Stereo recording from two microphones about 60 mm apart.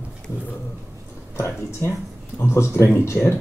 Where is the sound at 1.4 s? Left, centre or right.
Left.